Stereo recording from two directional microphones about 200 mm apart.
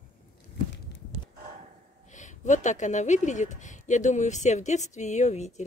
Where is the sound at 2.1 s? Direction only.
40° left (ahead or behind).